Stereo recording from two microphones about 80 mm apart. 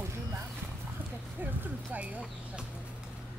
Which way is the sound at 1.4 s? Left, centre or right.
Right.